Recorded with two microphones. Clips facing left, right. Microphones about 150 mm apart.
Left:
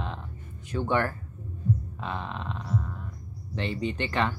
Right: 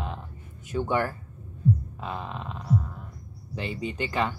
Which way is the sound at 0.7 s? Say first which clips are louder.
Right 2 dB; 20° right (ahead or behind).